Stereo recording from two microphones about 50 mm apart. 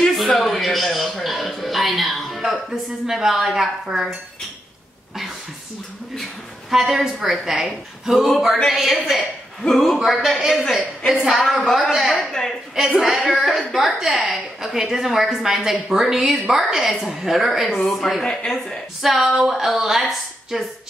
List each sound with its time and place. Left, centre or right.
0.0 s a sound: centre
0.4 s music: centre
6.7 s a woman's voice: centre
12.3 s speech: centre
12.7 s a woman's voice: centre
18.2 s speech: centre
18.9 s a woman's voice: centre